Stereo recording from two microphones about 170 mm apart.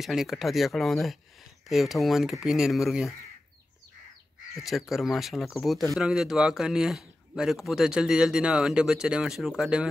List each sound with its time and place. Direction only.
0.0 s speech: centre (ahead or behind)
4.6 s speech: centre (ahead or behind)